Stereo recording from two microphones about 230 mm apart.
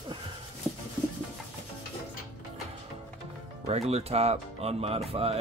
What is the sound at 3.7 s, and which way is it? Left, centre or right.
Speech, right.